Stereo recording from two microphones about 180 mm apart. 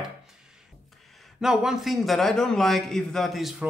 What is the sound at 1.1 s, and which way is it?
A man's voice, centre (ahead or behind).